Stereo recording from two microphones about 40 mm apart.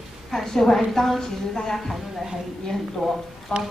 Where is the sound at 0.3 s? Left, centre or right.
Centre.